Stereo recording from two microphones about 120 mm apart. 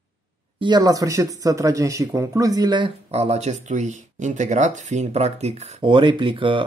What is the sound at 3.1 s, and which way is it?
Speech, 65° right (ahead or behind).